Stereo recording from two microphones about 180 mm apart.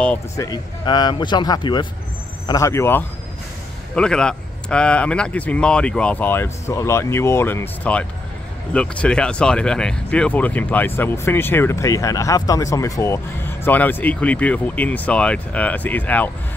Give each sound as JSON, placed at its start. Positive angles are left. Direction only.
{"t": 0.0, "sound": "speech", "side_deg": 5}
{"t": 0.5, "sound": "speech", "side_deg": 25}